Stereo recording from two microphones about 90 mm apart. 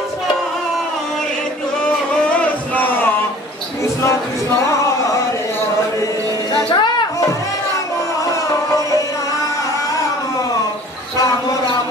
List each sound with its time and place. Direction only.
1.9 s music: 15° left (ahead or behind)
3.8 s a sound: 35° left (ahead or behind)
6.5 s music: 55° left (ahead or behind)